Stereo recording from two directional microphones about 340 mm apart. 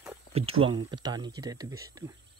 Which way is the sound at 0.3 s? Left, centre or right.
Centre.